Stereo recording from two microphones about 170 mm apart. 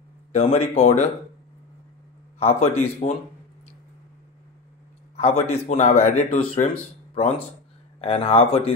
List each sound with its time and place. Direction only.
0.3 s speech: 40° left (ahead or behind)
2.3 s speech: 40° left (ahead or behind)
5.1 s speech: 40° left (ahead or behind)
6.2 s speech: 35° left (ahead or behind)